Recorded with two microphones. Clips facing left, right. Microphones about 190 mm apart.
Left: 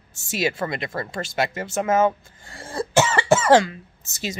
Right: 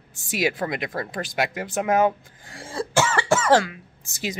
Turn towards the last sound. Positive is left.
turn(degrees=-15)  # may be behind; listen again after turning